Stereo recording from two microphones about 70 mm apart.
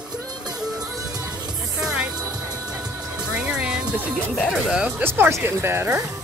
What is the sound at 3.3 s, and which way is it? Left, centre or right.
Music, centre.